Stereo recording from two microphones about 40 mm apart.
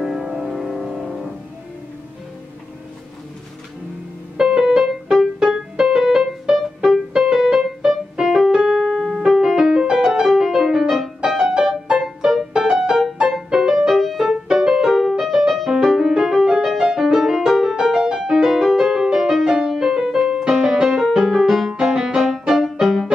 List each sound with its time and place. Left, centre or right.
0.0 s music: centre
4.4 s music: centre
13.8 s music: centre
18.9 s music: centre
19.1 s music: centre